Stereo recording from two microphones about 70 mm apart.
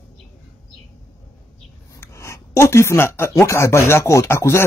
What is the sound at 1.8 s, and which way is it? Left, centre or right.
Speech, left.